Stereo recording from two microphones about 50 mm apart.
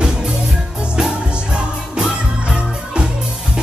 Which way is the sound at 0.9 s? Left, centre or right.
Centre.